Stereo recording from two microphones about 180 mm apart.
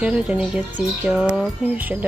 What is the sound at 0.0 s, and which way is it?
Speech, 5° right (ahead or behind).